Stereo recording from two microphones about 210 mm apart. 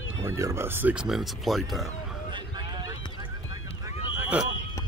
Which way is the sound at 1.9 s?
20° right (ahead or behind).